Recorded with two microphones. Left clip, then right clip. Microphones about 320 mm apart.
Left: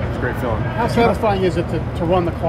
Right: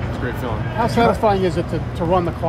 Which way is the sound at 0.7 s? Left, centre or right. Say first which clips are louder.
Right 1 dB; right.